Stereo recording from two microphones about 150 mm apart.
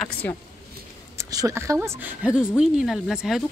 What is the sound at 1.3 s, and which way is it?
Speech, 20° right (ahead or behind).